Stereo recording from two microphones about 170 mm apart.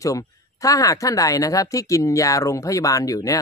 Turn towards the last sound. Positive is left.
turn(degrees=20)  # may be behind; listen again after turning